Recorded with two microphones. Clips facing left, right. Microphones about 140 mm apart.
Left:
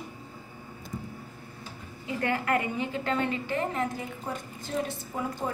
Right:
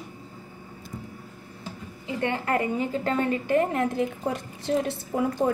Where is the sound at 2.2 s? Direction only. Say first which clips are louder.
Right 2 dB; 30° right (ahead or behind); by 3.8 s 45° right (ahead or behind).